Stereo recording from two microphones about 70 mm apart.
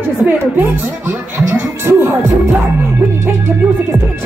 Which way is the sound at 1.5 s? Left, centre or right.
Right.